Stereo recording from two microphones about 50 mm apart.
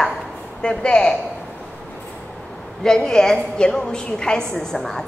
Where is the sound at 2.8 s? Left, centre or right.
Centre.